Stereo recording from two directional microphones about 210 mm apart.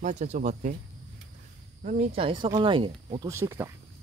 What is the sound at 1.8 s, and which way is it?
Speech, 30° right (ahead or behind).